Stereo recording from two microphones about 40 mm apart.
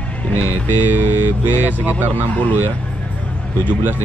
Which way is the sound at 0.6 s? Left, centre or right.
Right.